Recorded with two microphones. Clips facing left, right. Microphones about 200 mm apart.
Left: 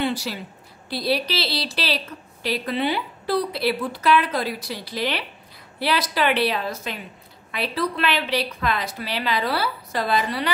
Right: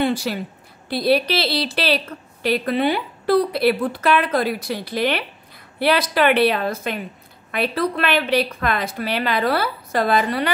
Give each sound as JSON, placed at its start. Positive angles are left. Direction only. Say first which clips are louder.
{"t": 0.0, "sound": "a woman's voice", "louder": "right 4 dB", "side_deg": -55}